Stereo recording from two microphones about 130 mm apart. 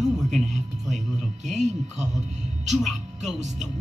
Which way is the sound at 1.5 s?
65° right (ahead or behind).